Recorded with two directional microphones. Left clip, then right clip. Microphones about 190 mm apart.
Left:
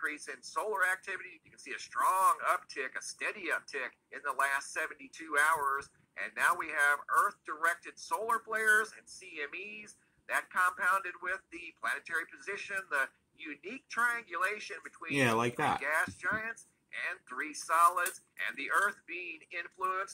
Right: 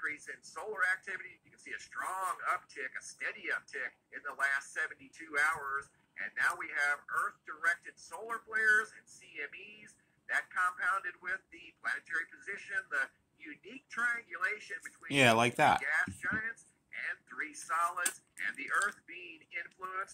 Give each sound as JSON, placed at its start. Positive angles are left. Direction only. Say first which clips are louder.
{"t": 0.0, "sound": "speech", "louder": "left 2 dB", "side_deg": 30}
{"t": 15.2, "sound": "speech", "louder": "right 5 dB", "side_deg": -15}
{"t": 15.8, "sound": "speech", "louder": "left 1 dB", "side_deg": 30}